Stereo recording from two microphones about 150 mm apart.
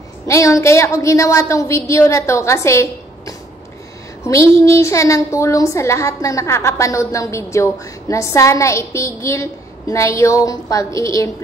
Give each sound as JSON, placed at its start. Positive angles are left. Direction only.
{"t": 0.3, "sound": "a woman's voice", "side_deg": 20}